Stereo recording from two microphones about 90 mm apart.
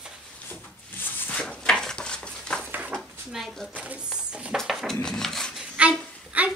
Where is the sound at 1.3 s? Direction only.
10° left (ahead or behind).